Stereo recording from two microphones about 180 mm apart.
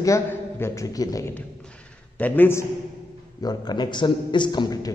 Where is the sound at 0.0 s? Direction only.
15° left (ahead or behind).